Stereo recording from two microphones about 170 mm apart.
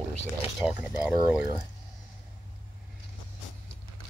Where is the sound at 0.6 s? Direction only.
5° right (ahead or behind).